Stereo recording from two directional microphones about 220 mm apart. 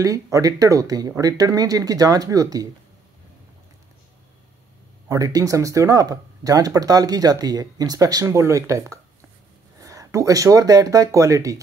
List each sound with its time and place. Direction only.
0.0 s speech: 15° right (ahead or behind)
5.0 s speech: 15° right (ahead or behind)